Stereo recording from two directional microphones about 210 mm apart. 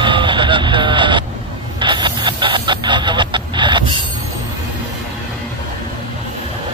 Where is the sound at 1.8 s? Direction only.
20° right (ahead or behind).